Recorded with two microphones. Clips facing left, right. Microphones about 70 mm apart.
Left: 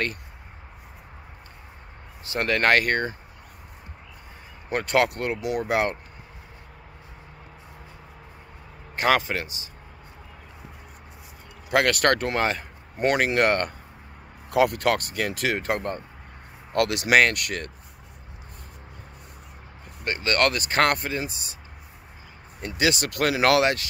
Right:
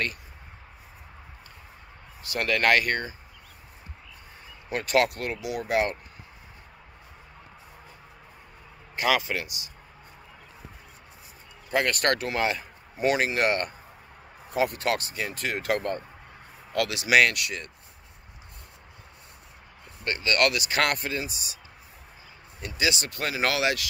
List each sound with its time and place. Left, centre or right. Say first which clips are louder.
2.2 s speech: left 2 dB; left
4.6 s speech: left 2 dB; left
8.9 s speech: left 3 dB; left
11.7 s speech: left 4 dB; left
13.0 s speech: left 3 dB; left
14.5 s speech: left 5 dB; left
15.6 s speech: even; left
16.7 s speech: left 2 dB; left
20.2 s speech: left 1 dB; left
22.7 s speech: left 4 dB; left